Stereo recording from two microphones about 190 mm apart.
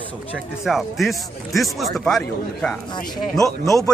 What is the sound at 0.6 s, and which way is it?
Speech, centre (ahead or behind).